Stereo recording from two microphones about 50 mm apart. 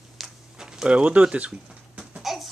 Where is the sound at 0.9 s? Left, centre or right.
Right.